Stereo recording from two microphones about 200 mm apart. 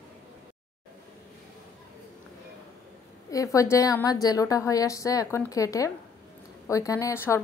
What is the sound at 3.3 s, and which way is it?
A woman's voice, 15° left (ahead or behind).